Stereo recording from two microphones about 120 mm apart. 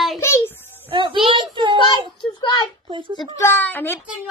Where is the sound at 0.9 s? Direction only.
45° right (ahead or behind).